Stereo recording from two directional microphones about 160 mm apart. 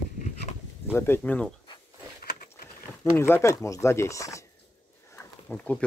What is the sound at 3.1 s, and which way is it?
Speech, 15° left (ahead or behind).